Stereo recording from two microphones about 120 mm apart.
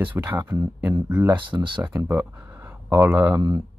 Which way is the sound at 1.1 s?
10° right (ahead or behind).